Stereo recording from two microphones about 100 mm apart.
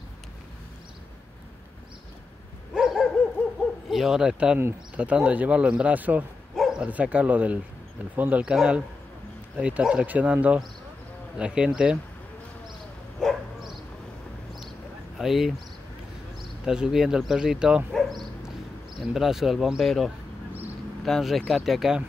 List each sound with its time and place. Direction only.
2.7 s dog: 5° right (ahead or behind)
3.9 s speech: 5° right (ahead or behind)
4.6 s speech: 25° right (ahead or behind)
5.0 s speech: 15° right (ahead or behind)
6.5 s speech: 5° right (ahead or behind)
13.2 s bow-wow: centre (ahead or behind)
15.1 s speech: 5° right (ahead or behind)
17.9 s dog: centre (ahead or behind)
18.9 s speech: 5° right (ahead or behind)